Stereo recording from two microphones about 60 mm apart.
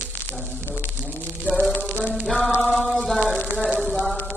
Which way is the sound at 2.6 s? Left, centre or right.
Centre.